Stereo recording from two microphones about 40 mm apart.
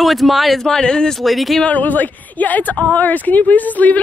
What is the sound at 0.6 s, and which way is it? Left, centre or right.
Speech, centre.